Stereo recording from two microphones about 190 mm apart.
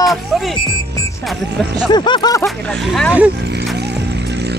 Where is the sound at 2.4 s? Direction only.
Centre (ahead or behind).